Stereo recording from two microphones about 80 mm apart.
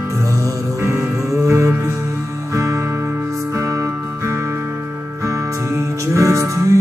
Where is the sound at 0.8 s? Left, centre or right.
Right.